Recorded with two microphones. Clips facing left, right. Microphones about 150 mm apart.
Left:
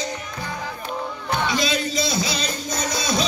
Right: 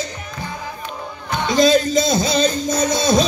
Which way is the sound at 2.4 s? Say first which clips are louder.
Right 9 dB; 25° right (ahead or behind).